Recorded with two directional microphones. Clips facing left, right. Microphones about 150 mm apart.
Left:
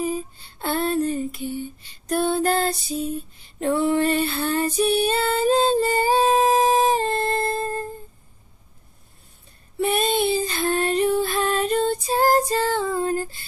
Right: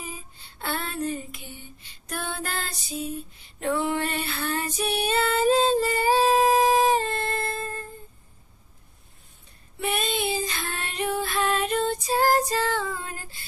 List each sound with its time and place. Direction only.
0.6 s a sound: 35° left (ahead or behind)
3.1 s female singing: 35° left (ahead or behind)
9.8 s child singing: 30° left (ahead or behind)
10.4 s music: 35° left (ahead or behind)